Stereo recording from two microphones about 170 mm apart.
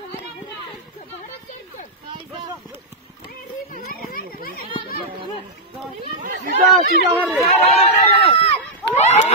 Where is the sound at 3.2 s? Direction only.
55° left (ahead or behind).